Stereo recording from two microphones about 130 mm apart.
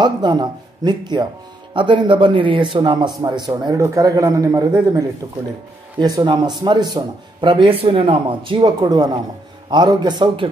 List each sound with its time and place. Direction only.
0.0 s speech: 35° right (ahead or behind)